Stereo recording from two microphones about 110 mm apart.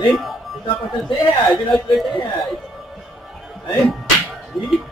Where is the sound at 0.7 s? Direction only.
40° left (ahead or behind).